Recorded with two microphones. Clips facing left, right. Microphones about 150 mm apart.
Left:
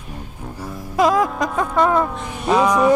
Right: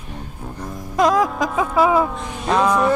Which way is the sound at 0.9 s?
Centre (ahead or behind).